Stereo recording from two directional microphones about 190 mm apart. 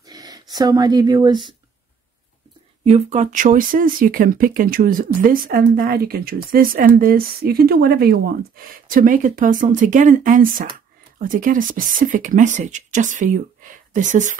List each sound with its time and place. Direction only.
0.0 s speech: 20° right (ahead or behind)
2.8 s speech: 35° right (ahead or behind)